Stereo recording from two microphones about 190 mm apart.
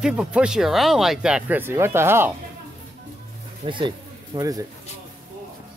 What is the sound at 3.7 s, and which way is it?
Speech, 25° right (ahead or behind).